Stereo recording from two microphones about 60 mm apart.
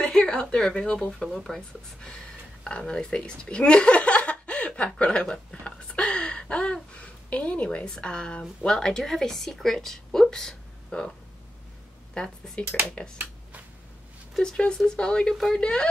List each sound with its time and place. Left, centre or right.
0.0 s speech: centre
1.2 s speech: centre
2.6 s speech: centre
12.1 s speech: centre
13.0 s a sound: centre
14.4 s speech: centre
15.3 s speech: centre